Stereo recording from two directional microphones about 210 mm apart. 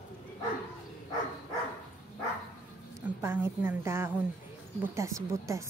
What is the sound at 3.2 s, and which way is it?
A woman's voice, 10° right (ahead or behind).